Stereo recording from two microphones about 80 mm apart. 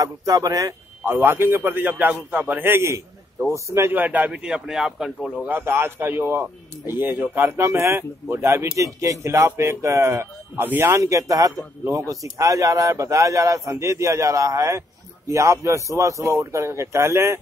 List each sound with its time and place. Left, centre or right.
0.0 s speech: right
1.0 s a man's voice: right; by 5.3 s centre
5.5 s a man's voice: right